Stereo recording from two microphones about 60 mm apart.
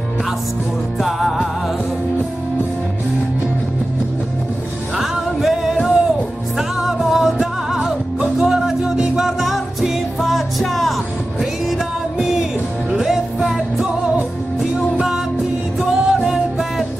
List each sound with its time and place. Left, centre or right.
1.0 s music: centre
4.9 s music: centre
12.2 s music: centre